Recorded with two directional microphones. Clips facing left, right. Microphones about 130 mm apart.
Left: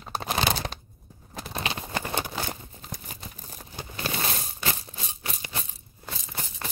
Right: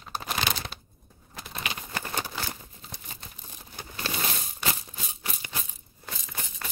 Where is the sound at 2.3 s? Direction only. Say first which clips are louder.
Left 3 dB; 45° left (ahead or behind).